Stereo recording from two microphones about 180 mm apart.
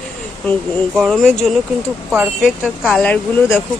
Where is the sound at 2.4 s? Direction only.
5° left (ahead or behind).